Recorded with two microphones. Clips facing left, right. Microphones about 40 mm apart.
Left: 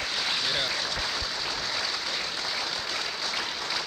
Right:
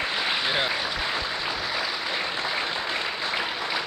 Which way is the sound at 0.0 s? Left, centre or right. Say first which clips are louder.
Right 4 dB; right.